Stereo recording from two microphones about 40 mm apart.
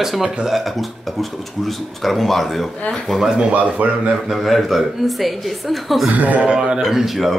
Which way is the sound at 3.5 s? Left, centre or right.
Right.